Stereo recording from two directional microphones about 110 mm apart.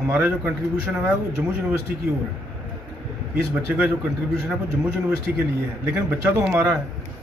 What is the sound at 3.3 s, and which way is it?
Speech, 15° right (ahead or behind).